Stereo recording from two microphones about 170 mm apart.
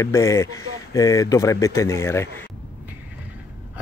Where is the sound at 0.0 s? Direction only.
20° left (ahead or behind).